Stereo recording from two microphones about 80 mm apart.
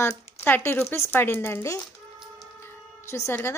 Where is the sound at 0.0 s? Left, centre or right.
Left.